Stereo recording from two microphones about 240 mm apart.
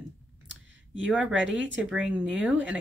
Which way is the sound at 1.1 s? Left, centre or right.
Centre.